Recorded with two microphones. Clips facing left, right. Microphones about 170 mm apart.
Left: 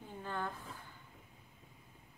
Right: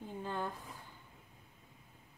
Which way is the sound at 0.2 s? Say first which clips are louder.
Right 1 dB; 15° right (ahead or behind).